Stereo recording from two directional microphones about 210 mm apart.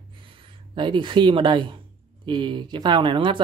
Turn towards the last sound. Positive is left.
turn(degrees=-20)  # may be behind; listen again after turning